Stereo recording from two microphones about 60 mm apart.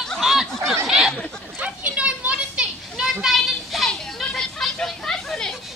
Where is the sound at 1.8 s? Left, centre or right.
Centre.